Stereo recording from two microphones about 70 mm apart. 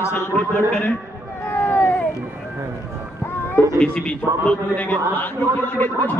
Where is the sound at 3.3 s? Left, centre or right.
Left.